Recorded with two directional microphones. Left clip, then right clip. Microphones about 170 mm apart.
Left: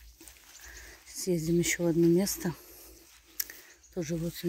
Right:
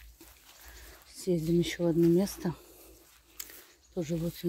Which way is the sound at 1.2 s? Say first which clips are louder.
Even; 5° left (ahead or behind).